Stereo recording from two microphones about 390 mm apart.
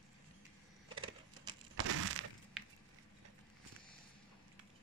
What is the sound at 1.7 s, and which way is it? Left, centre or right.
Breaking, right.